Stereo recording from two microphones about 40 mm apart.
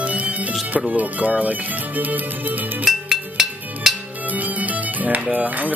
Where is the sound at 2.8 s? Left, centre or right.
Centre.